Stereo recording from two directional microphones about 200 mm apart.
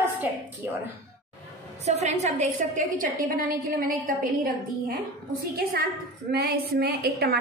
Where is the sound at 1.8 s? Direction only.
35° right (ahead or behind).